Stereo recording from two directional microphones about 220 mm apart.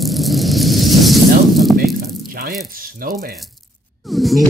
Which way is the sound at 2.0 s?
40° right (ahead or behind).